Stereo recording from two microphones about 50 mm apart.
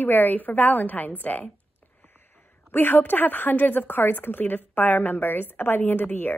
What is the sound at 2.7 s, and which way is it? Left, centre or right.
A woman's voice, left.